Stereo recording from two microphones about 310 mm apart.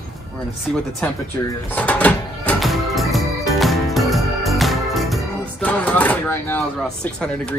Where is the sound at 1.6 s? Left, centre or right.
Centre.